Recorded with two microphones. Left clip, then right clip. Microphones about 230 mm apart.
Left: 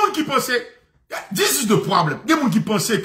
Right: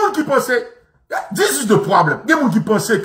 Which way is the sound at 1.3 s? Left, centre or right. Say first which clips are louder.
Right 3 dB; centre.